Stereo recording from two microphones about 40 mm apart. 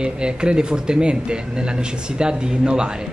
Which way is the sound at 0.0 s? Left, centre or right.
Right.